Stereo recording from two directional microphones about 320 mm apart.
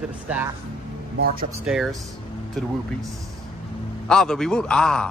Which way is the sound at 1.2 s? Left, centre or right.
Right.